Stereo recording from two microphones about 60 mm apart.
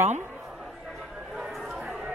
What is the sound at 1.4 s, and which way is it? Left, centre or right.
Chatter, centre.